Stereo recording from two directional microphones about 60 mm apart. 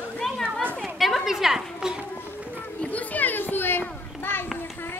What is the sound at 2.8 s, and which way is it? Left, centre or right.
Children playing, left.